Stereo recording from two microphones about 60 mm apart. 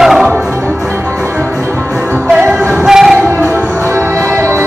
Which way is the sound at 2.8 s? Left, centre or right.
Centre.